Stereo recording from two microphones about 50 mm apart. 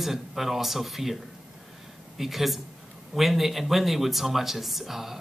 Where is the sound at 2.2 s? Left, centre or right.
Centre.